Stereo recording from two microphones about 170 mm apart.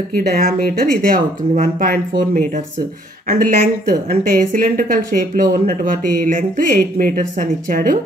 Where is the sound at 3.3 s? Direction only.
55° right (ahead or behind).